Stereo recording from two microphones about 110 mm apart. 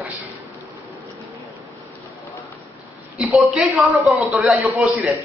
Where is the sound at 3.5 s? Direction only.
15° right (ahead or behind).